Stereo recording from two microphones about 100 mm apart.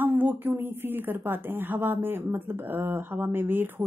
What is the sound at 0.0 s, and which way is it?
Speech, 15° right (ahead or behind).